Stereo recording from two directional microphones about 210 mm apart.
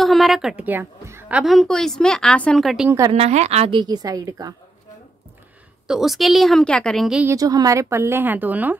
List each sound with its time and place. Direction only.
0.0 s a woman's voice: centre (ahead or behind)
1.4 s a woman's voice: centre (ahead or behind)
3.1 s a woman's voice: 30° right (ahead or behind)
5.9 s a woman's voice: centre (ahead or behind)
7.3 s speech: 15° right (ahead or behind)